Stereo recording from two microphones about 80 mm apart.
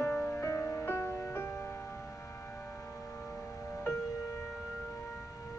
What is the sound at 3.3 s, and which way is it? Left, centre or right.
Tubular bells, centre.